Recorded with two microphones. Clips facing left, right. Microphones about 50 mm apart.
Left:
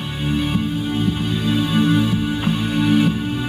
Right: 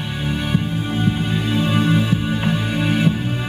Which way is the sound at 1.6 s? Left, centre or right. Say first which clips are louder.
Left 1 dB; right.